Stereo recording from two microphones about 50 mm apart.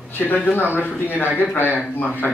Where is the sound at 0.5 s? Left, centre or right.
Left.